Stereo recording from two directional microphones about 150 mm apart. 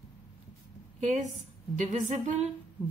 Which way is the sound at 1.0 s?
50° right (ahead or behind).